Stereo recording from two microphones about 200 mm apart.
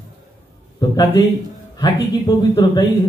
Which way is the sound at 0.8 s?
20° left (ahead or behind).